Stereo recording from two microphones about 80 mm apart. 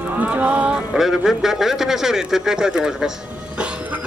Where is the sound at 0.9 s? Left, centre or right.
Centre.